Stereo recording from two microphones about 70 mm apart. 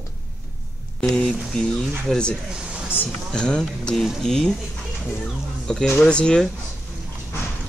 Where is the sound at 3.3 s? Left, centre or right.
Centre.